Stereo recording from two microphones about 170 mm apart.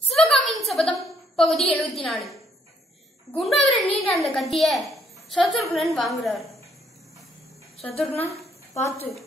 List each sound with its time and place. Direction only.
0.1 s a sound: centre (ahead or behind)
3.3 s a woman's voice: centre (ahead or behind)
7.8 s a woman's voice: 35° left (ahead or behind)